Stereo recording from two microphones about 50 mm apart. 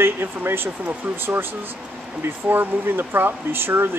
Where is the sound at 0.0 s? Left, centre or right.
Right.